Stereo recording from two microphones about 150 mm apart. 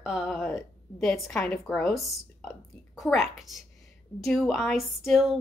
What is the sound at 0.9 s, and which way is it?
Speech, 15° left (ahead or behind).